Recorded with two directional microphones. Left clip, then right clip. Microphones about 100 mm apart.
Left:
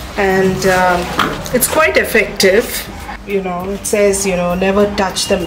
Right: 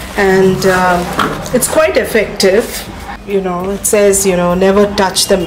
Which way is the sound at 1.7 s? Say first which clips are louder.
Right 1 dB; 15° left (ahead or behind).